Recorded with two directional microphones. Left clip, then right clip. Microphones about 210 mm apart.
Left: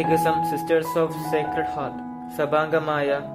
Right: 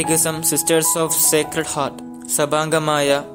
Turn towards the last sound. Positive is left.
turn(degrees=-35)  # may be behind; listen again after turning